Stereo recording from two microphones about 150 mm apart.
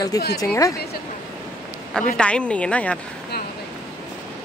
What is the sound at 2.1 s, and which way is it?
Speech, 5° left (ahead or behind).